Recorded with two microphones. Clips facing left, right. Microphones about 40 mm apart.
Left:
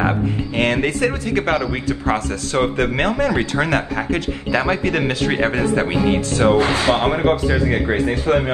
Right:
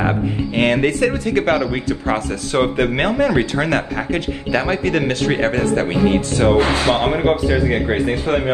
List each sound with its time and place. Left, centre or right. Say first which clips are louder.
0.6 s speech: right 2 dB; centre
6.5 s speech: right 2 dB; right
7.2 s a man's voice: right 1 dB; centre